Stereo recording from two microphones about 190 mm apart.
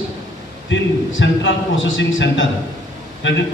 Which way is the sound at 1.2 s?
80° left.